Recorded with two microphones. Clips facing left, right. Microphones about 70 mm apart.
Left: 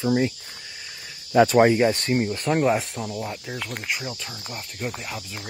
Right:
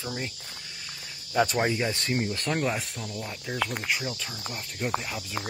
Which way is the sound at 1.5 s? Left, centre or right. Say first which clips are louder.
Left 10 dB; left.